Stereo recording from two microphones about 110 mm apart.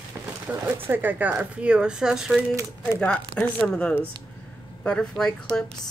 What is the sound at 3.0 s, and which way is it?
Speech, 10° left (ahead or behind).